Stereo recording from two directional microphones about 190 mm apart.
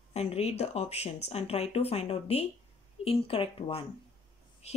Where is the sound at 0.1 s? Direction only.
35° left (ahead or behind).